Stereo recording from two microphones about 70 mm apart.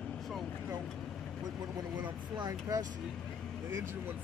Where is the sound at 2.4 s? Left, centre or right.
Right.